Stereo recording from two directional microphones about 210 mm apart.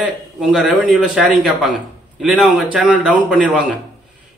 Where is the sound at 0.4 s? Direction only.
Centre (ahead or behind).